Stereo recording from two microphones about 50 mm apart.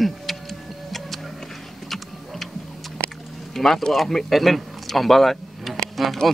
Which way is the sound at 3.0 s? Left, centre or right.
Left.